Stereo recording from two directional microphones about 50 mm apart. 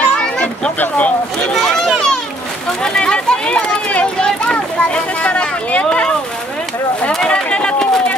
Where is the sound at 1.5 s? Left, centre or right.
Centre.